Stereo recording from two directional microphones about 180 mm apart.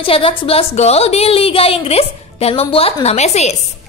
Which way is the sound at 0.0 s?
30° left (ahead or behind).